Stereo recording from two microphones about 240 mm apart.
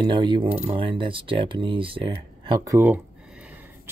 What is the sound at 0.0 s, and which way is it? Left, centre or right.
Speech, centre.